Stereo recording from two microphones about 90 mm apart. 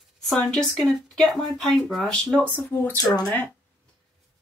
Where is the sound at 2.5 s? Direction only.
25° left (ahead or behind).